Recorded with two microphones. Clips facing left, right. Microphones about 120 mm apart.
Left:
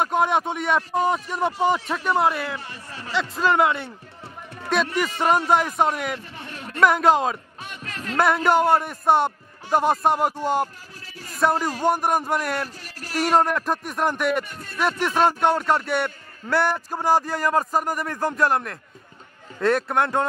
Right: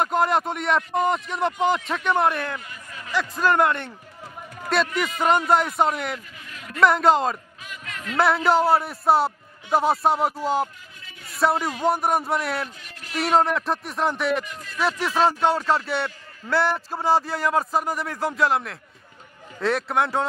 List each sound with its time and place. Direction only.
0.0 s a man's voice: centre (ahead or behind)
2.6 s speech: 30° left (ahead or behind)
3.2 s a man's voice: centre (ahead or behind)
5.5 s a man's voice: centre (ahead or behind)
6.1 s a sound: 30° left (ahead or behind)
6.8 s a man's voice: centre (ahead or behind)
7.6 s music: 30° left (ahead or behind)
8.2 s a man's voice: centre (ahead or behind)